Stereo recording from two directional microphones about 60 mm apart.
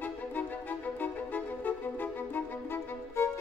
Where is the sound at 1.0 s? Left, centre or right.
Left.